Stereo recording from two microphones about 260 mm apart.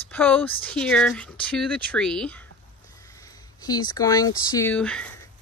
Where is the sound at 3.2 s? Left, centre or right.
Centre.